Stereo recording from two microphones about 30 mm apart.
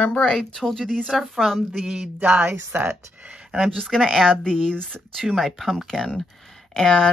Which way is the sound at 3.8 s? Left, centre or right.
Centre.